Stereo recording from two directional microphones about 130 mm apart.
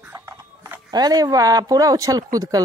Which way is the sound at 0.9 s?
30° right (ahead or behind).